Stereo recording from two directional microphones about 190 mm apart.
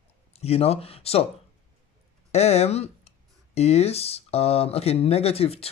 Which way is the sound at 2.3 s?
35° left (ahead or behind).